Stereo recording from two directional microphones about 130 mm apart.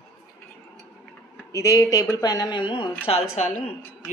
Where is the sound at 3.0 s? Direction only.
55° left (ahead or behind).